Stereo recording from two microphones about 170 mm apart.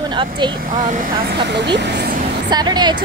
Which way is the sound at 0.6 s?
50° right (ahead or behind).